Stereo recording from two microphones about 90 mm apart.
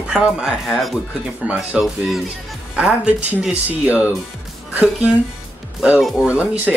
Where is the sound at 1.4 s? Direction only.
10° right (ahead or behind).